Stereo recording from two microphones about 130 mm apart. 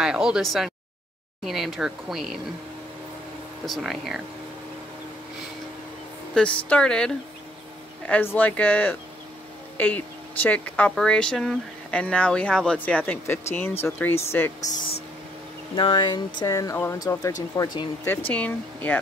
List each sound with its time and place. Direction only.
0.0 s speech: 5° right (ahead or behind)
3.6 s speech: centre (ahead or behind)
6.3 s speech: 10° left (ahead or behind)
8.1 s speech: 15° left (ahead or behind)
15.7 s speech: 40° left (ahead or behind)
16.3 s speech: 25° left (ahead or behind)
18.3 s speech: 10° left (ahead or behind)